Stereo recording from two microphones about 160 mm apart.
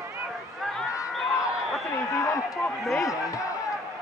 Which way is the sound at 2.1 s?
20° left (ahead or behind).